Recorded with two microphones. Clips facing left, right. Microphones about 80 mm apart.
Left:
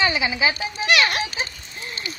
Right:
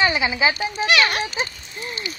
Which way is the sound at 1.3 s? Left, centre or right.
Centre.